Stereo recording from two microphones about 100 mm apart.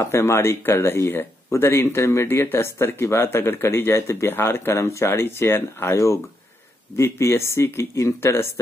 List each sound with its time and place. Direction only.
0.0 s speech: 25° left (ahead or behind)